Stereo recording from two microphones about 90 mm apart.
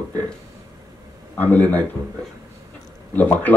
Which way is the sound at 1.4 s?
20° left (ahead or behind).